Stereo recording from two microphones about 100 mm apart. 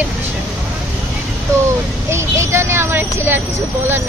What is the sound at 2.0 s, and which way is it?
Speech, 30° right (ahead or behind).